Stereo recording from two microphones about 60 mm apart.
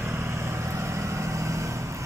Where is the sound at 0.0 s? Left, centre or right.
Right.